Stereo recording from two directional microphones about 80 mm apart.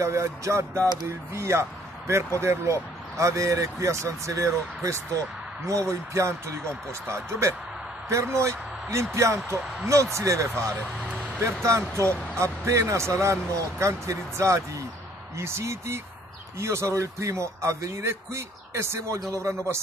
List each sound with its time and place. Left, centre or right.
0.0 s speech: right